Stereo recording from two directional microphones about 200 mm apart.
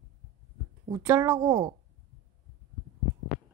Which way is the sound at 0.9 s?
15° right (ahead or behind).